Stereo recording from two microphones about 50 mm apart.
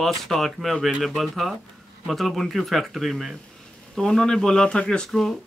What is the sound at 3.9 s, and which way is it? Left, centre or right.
Speech, centre.